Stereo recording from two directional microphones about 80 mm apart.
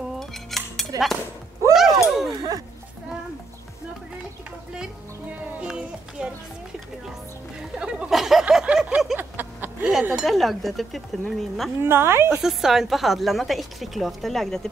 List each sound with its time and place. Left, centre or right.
0.2 s cutlery: centre
1.7 s a sound: centre
5.6 s speech: centre
7.7 s speech: centre
8.7 s a sound: centre; by 9.8 s right
10.2 s a woman's voice: centre
11.8 s a woman's voice: right
12.4 s a woman's voice: centre